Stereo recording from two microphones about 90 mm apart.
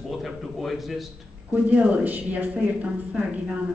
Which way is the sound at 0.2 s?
Centre (ahead or behind).